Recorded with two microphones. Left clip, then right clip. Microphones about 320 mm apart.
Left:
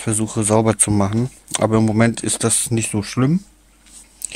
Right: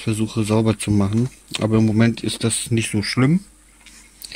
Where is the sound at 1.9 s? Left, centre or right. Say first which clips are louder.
Left 2 dB; centre.